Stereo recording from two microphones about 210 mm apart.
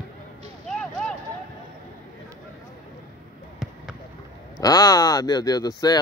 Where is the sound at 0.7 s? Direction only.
5° left (ahead or behind).